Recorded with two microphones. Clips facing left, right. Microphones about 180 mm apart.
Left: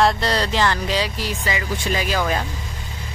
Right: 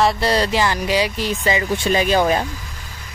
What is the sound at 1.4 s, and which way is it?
Speech, 25° right (ahead or behind).